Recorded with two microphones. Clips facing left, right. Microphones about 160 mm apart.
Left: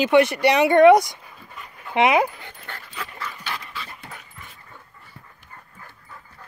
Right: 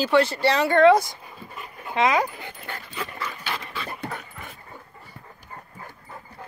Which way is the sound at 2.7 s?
25° right (ahead or behind).